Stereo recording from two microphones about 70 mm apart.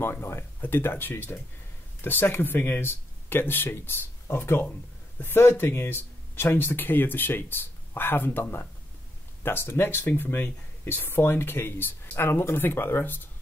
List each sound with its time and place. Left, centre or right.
0.0 s speech: left